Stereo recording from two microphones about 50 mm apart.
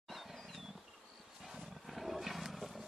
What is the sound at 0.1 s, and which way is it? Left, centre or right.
Wild animals, centre.